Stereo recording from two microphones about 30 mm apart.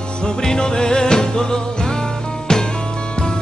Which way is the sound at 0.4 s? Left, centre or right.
Left.